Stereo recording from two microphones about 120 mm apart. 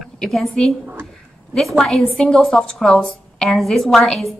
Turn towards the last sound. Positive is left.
turn(degrees=5)  # may be behind; listen again after turning